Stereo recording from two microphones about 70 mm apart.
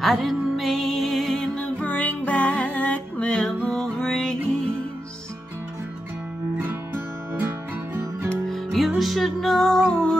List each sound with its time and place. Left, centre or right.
0.0 s music: centre
1.6 s music: centre
6.6 s music: right
8.7 s music: centre